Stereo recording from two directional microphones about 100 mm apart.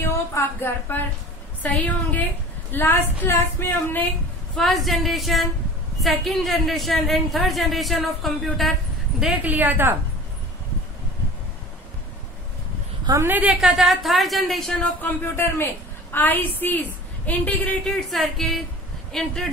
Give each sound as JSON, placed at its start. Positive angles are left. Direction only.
{"t": 0.0, "sound": "a woman's voice", "side_deg": 25}
{"t": 4.6, "sound": "a woman's voice", "side_deg": 0}
{"t": 9.2, "sound": "a woman's voice", "side_deg": -10}
{"t": 13.2, "sound": "a woman's voice", "side_deg": -15}
{"t": 13.6, "sound": "a woman's voice", "side_deg": -5}
{"t": 15.0, "sound": "a woman's voice", "side_deg": 15}
{"t": 17.8, "sound": "a woman's voice", "side_deg": 0}